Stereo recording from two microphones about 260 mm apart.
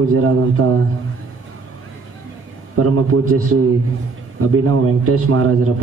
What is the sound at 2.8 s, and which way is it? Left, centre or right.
Speech, right.